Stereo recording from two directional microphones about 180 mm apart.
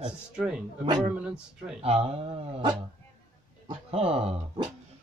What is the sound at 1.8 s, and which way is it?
Speech, 35° right (ahead or behind).